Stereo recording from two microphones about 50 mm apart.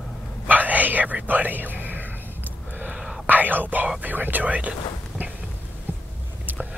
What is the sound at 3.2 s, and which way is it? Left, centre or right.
Whispering, right.